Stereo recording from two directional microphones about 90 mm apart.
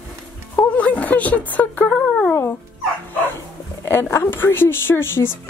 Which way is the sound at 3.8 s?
30° left (ahead or behind).